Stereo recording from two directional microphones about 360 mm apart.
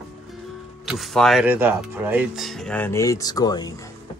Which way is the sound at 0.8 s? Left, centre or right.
Centre.